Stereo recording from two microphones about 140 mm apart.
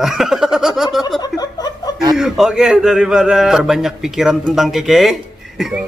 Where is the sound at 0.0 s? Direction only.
5° right (ahead or behind).